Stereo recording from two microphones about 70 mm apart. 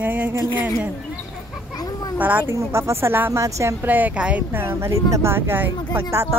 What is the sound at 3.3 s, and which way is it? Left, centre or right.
Speech, right.